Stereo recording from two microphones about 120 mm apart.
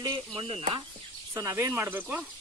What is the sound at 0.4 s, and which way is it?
Speech, 55° right (ahead or behind).